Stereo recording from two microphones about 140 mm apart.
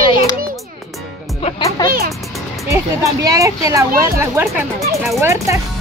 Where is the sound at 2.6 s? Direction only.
20° right (ahead or behind).